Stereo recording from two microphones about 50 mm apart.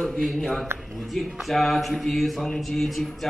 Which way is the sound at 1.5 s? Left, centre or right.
Centre.